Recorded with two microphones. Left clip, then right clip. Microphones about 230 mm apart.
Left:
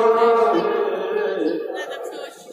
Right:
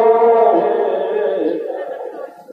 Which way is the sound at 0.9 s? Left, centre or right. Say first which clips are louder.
Right 5 dB; left.